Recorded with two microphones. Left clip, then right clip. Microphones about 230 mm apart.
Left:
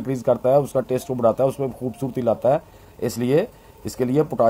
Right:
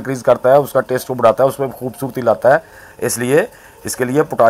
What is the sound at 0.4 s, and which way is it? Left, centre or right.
Speech, right.